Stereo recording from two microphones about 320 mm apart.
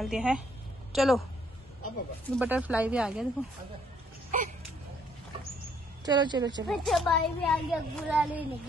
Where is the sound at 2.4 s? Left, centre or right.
Centre.